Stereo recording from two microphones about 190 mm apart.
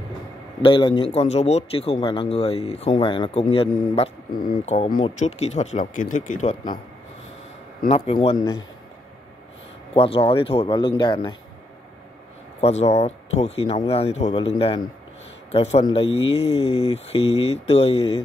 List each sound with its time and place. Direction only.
0.6 s a man's voice: 25° left (ahead or behind)
4.3 s speech: 50° left (ahead or behind)
5.0 s a man's voice: 35° left (ahead or behind)
6.4 s speech: 25° left (ahead or behind)
7.9 s a man's voice: 30° left (ahead or behind)
8.4 s speech: 20° left (ahead or behind)
9.9 s speech: 30° left (ahead or behind)
12.5 s a man's voice: 35° left (ahead or behind)